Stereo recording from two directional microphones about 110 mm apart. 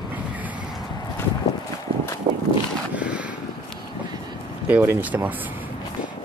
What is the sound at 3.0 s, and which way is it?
Vehicle, 10° right (ahead or behind).